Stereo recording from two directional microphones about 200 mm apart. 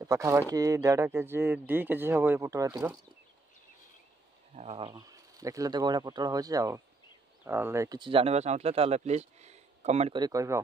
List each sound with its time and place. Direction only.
0.0 s speech: 15° right (ahead or behind)
4.6 s speech: 30° right (ahead or behind)
10.1 s speech: 20° right (ahead or behind)